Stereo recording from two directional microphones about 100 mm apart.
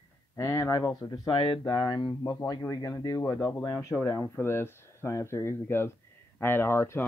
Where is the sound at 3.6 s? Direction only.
30° left (ahead or behind).